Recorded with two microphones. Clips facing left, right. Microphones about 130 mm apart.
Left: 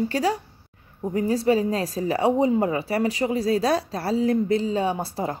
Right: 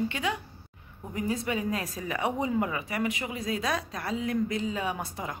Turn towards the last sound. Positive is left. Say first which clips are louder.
# left 7 dB
turn(degrees=30)  # may be behind; listen again after turning